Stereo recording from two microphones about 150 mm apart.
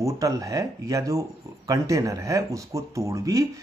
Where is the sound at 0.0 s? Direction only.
20° right (ahead or behind).